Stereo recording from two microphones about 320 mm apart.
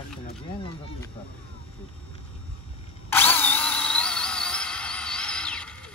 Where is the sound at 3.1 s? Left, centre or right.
Centre.